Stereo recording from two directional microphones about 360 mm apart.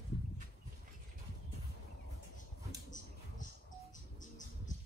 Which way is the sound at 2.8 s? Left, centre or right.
Left.